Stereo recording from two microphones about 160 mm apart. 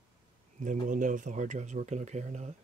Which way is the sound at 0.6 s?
55° right (ahead or behind).